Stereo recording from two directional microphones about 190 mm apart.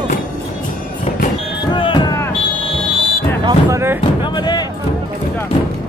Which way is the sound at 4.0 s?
25° left (ahead or behind).